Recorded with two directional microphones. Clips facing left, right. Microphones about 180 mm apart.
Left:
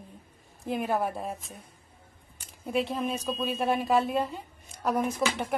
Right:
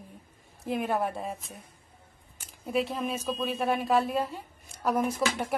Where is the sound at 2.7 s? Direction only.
Centre (ahead or behind).